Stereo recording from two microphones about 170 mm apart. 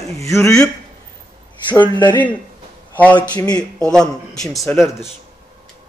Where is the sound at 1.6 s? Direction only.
25° left (ahead or behind).